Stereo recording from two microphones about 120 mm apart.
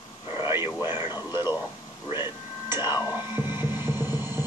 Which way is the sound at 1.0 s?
35° left (ahead or behind).